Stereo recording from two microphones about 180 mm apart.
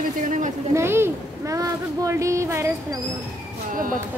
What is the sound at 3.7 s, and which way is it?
Speech, 50° right (ahead or behind).